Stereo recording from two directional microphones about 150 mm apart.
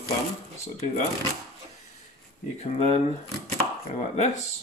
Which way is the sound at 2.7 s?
50° left (ahead or behind).